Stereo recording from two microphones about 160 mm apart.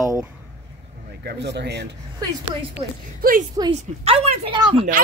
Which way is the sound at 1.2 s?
90° right.